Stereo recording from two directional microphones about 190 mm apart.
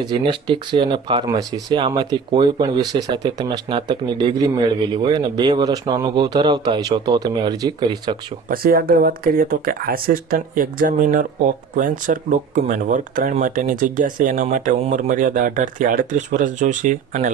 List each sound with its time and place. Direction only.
0.0 s speech: 25° right (ahead or behind)
8.5 s speech: 50° right (ahead or behind)